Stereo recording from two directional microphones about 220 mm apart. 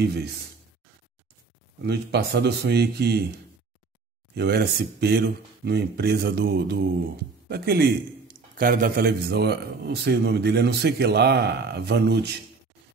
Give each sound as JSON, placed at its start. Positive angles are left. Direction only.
{"t": 0.0, "sound": "speech", "side_deg": -50}
{"t": 1.8, "sound": "speech", "side_deg": -50}
{"t": 4.4, "sound": "speech", "side_deg": -45}